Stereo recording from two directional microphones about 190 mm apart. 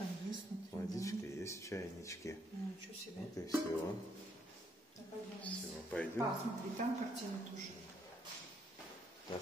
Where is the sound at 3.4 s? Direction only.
20° left (ahead or behind).